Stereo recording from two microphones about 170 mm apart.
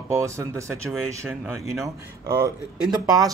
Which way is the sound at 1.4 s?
Centre (ahead or behind).